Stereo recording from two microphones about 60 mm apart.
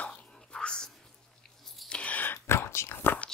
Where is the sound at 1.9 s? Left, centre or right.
Left.